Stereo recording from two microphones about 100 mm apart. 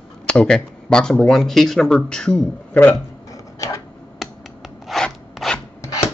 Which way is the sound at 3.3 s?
30° left (ahead or behind).